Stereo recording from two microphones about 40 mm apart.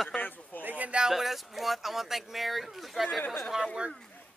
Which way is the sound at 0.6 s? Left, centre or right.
Right.